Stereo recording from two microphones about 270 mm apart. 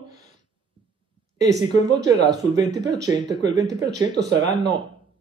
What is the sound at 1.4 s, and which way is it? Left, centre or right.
Speech, centre.